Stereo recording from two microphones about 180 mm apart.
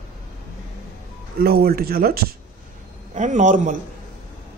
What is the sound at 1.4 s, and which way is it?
Speech, 60° right (ahead or behind).